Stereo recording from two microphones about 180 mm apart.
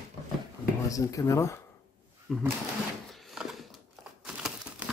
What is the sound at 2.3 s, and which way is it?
Speech, centre (ahead or behind).